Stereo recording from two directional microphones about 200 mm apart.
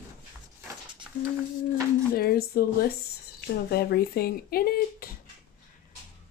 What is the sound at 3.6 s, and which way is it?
Speech, 50° left (ahead or behind).